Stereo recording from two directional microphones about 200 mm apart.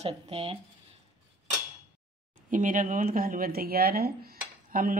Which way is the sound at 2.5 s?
40° right (ahead or behind).